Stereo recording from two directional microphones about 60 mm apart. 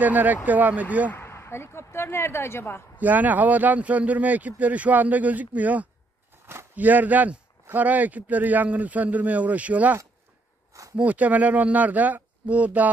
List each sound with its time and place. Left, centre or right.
0.0 s speech: right
1.1 s speech: left
3.0 s speech: right
11.0 s speech: right